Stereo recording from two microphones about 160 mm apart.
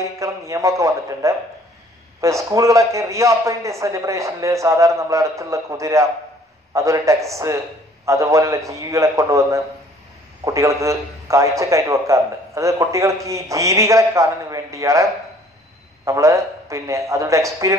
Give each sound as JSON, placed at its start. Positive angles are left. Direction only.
{"t": 0.0, "sound": "a man's voice", "side_deg": -20}
{"t": 16.1, "sound": "a man's voice", "side_deg": -20}